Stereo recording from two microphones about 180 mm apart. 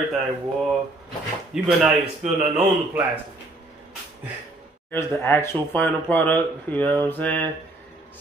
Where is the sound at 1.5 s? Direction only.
Centre (ahead or behind).